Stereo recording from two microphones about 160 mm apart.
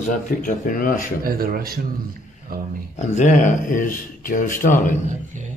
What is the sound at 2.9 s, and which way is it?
Speech, 45° left (ahead or behind).